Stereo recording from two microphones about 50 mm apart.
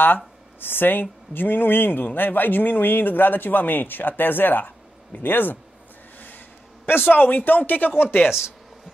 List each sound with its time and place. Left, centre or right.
0.6 s speech: left
6.1 s a sound: left
6.9 s speech: left